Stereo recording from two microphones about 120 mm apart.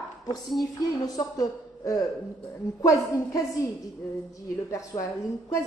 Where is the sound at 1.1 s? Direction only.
30° left (ahead or behind).